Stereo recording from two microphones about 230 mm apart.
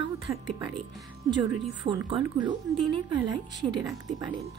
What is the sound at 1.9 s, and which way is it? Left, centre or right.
Speech, right.